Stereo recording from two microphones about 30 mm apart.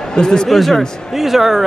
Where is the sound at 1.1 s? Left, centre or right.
Centre.